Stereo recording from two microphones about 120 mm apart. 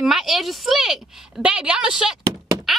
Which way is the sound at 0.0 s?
Centre (ahead or behind).